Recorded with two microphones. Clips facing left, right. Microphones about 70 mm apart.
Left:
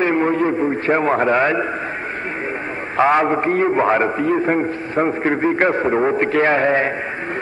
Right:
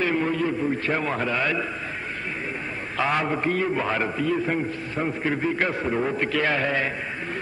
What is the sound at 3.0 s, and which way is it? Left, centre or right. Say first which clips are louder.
A man's voice: left 9 dB; left.